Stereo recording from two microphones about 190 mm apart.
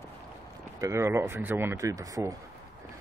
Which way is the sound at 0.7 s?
15° right (ahead or behind).